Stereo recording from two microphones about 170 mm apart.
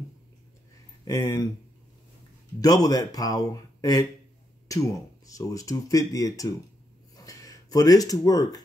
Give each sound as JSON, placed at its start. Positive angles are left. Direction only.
{"t": 1.0, "sound": "speech", "side_deg": 20}
{"t": 2.6, "sound": "speech", "side_deg": 20}
{"t": 7.2, "sound": "a sound", "side_deg": 20}